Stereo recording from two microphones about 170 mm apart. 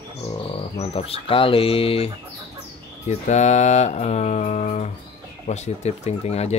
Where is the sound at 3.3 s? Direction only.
45° left (ahead or behind).